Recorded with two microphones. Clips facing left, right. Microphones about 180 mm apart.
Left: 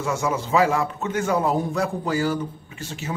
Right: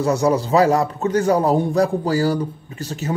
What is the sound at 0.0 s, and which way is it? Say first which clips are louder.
A man's voice: right 7 dB; 40° right (ahead or behind).